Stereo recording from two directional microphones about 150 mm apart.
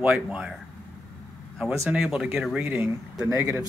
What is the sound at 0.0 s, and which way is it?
Speech, 5° right (ahead or behind).